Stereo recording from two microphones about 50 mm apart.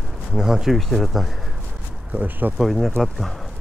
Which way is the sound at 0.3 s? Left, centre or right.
Centre.